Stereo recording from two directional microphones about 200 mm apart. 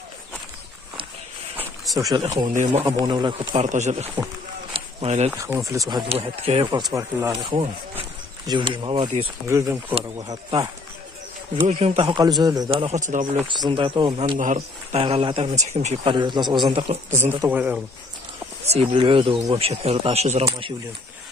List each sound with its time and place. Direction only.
2.0 s speech: 15° right (ahead or behind)
2.5 s speech: 35° right (ahead or behind)
2.8 s speech: 20° right (ahead or behind)
4.7 s a sound: 35° right (ahead or behind)
5.4 s speech: 15° right (ahead or behind)
6.9 s speech: 10° right (ahead or behind)
11.6 s speech: 35° right (ahead or behind)
12.8 s speech: 40° right (ahead or behind)
13.7 s speech: 25° right (ahead or behind)
14.4 s speech: 35° right (ahead or behind)
16.9 s speech: 35° right (ahead or behind)
17.4 s speech: 10° right (ahead or behind)
18.7 s speech: 30° right (ahead or behind)